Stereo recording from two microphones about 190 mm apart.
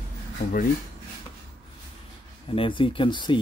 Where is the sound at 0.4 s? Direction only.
45° left (ahead or behind).